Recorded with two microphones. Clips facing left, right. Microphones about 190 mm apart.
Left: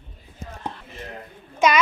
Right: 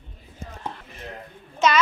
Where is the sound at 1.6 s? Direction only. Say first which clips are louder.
Left 2 dB; 10° left (ahead or behind).